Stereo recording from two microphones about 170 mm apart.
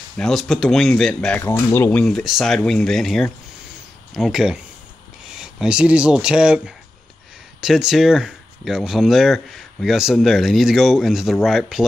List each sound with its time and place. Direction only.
0.2 s speech: centre (ahead or behind)